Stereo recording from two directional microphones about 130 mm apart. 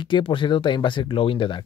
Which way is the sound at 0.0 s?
40° left (ahead or behind).